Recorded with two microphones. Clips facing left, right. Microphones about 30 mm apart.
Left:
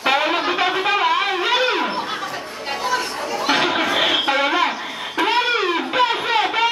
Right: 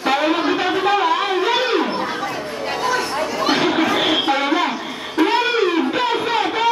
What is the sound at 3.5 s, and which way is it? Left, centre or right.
Chatter, centre.